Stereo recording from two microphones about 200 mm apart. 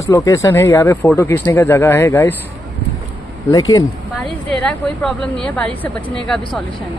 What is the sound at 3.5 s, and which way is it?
Speech, 15° left (ahead or behind).